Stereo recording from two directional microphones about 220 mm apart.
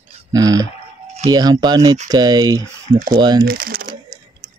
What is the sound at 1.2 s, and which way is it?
Speech, 15° right (ahead or behind).